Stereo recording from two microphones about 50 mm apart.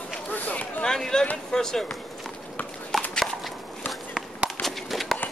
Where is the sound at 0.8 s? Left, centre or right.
Centre.